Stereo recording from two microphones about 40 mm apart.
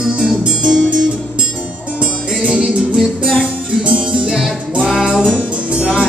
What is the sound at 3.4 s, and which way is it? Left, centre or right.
Music, right.